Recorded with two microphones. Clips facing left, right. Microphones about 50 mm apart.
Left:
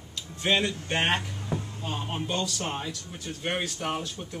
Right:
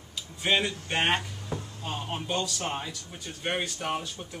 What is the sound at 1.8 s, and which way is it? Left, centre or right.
Speech, centre.